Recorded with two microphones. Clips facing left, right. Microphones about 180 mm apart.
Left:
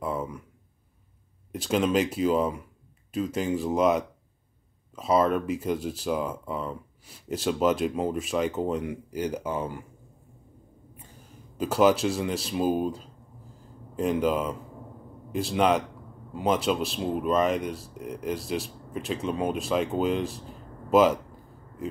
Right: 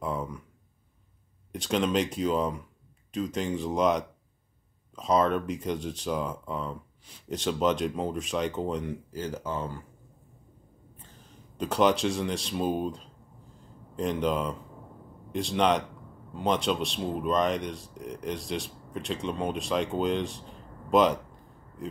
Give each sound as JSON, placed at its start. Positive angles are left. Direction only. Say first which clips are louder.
{"t": 0.0, "sound": "a sound", "louder": "left 2 dB", "side_deg": 5}
{"t": 1.5, "sound": "speech", "louder": "left 2 dB", "side_deg": 5}
{"t": 9.1, "sound": "speech", "louder": "left 5 dB", "side_deg": 15}
{"t": 11.0, "sound": "speech", "louder": "left 2 dB", "side_deg": 10}